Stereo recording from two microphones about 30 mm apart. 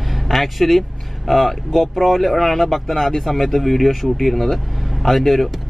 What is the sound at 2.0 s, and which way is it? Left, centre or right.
Speech, centre.